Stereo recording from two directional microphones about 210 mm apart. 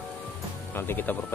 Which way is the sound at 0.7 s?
10° left (ahead or behind).